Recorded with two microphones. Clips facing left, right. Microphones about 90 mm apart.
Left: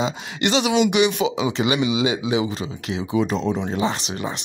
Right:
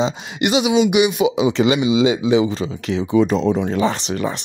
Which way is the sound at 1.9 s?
30° right (ahead or behind).